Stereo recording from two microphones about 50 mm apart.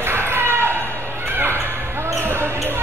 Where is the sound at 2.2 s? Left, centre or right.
Right.